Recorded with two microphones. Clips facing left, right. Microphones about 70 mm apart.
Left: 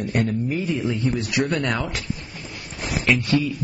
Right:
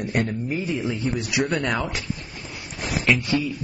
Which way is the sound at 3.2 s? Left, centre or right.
Centre.